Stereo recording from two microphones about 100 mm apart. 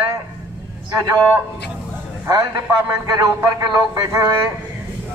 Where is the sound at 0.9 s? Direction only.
40° right (ahead or behind).